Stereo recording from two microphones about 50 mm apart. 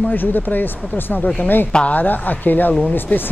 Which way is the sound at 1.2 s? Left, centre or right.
Left.